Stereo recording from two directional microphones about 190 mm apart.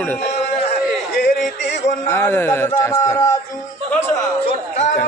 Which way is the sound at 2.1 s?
10° left (ahead or behind).